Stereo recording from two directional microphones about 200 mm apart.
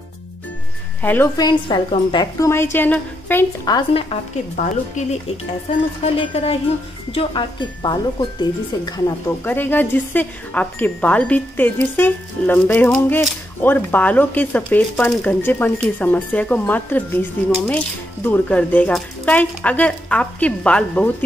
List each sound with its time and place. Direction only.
1.0 s speech: 10° left (ahead or behind)
1.3 s a woman's voice: 20° left (ahead or behind); by 21.1 s 5° left (ahead or behind)